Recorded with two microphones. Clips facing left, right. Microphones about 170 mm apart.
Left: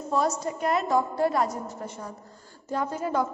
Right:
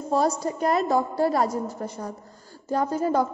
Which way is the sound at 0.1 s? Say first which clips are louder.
Right 3 dB; 35° right (ahead or behind).